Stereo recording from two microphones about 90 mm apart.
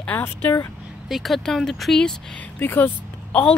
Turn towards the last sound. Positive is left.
turn(degrees=20)  # may be behind; listen again after turning